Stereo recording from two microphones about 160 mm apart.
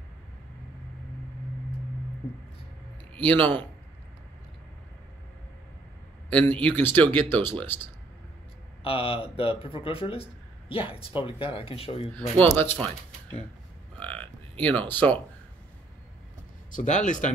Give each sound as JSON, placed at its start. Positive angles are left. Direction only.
{"t": 3.2, "sound": "speech", "side_deg": 10}
{"t": 6.3, "sound": "speech", "side_deg": 10}
{"t": 8.8, "sound": "speech", "side_deg": 35}
{"t": 12.4, "sound": "speech", "side_deg": 15}
{"t": 13.9, "sound": "cattle", "side_deg": 10}
{"t": 14.6, "sound": "speech", "side_deg": 10}
{"t": 16.7, "sound": "speech", "side_deg": 50}